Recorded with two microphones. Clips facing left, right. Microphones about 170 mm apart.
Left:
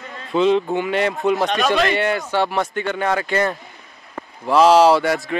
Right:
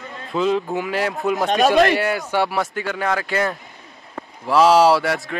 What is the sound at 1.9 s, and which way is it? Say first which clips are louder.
Speech: left 1 dB; 5° right (ahead or behind).